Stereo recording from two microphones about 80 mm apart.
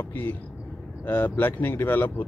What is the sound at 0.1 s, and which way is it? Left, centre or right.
Speech, left.